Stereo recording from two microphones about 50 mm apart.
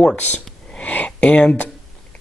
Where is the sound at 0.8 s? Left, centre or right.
Left.